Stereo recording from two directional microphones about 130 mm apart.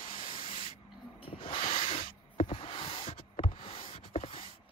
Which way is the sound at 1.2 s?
45° left (ahead or behind).